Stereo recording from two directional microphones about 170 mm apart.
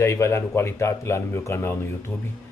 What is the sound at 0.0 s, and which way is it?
Speech, 15° left (ahead or behind).